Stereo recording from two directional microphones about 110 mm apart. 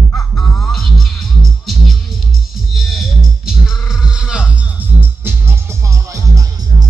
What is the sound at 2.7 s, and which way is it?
Music, centre (ahead or behind).